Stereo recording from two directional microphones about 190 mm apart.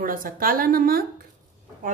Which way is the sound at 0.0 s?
45° right (ahead or behind).